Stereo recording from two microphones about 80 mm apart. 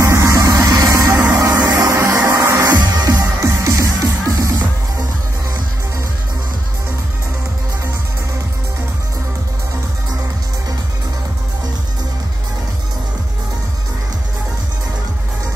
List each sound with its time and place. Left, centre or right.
0.0 s music: right
2.8 s music: right
3.1 s music: right